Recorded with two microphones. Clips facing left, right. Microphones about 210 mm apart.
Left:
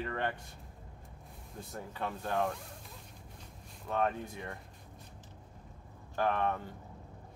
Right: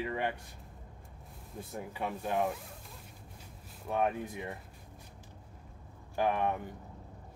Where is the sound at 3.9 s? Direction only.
15° right (ahead or behind).